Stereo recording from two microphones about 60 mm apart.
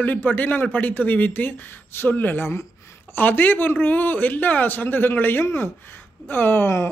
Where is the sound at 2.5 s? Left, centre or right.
Left.